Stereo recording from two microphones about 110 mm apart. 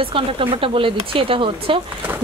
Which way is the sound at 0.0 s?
55° right (ahead or behind).